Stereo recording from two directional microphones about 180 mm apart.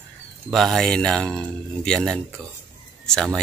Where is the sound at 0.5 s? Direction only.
Centre (ahead or behind).